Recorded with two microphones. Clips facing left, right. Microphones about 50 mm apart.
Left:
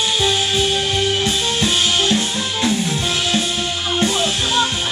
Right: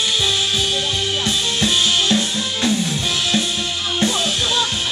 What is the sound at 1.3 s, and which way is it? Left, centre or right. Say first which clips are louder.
Music: left 1 dB; centre.